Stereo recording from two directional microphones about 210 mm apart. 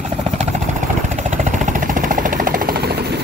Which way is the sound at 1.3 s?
35° right (ahead or behind).